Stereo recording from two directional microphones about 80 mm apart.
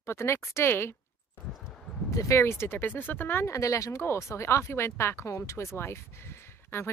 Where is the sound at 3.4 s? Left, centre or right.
Left.